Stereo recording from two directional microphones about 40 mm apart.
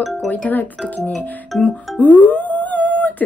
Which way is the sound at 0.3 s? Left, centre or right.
Left.